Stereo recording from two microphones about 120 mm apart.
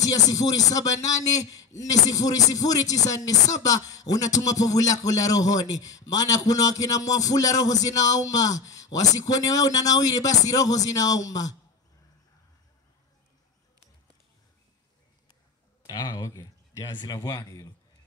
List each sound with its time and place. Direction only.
0.0 s speech: 30° left (ahead or behind)
15.9 s speech: 35° left (ahead or behind)